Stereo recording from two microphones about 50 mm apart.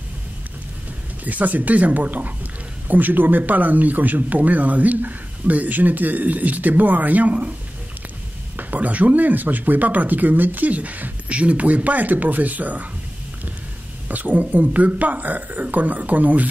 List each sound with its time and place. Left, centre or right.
1.2 s speech: right
8.5 s speech: right
14.0 s speech: right